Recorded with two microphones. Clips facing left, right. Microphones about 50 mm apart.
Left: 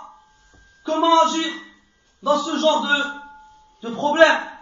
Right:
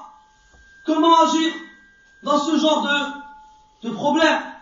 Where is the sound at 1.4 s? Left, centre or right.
Right.